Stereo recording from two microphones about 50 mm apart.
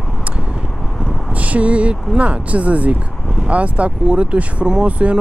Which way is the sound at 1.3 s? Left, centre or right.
Right.